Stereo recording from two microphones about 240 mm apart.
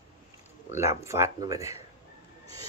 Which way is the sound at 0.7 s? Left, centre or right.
Centre.